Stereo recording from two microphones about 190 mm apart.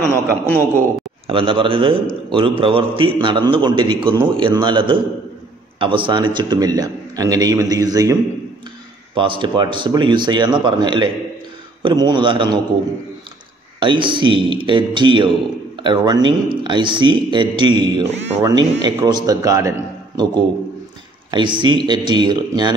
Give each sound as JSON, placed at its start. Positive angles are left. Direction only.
{"t": 0.1, "sound": "a man's voice", "side_deg": -15}
{"t": 1.2, "sound": "a man's voice", "side_deg": -30}
{"t": 13.7, "sound": "a man's voice", "side_deg": -25}
{"t": 21.3, "sound": "a man's voice", "side_deg": -25}